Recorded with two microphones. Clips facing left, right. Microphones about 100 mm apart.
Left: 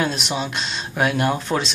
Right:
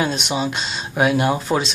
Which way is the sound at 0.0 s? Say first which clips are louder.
Right 2 dB; centre (ahead or behind).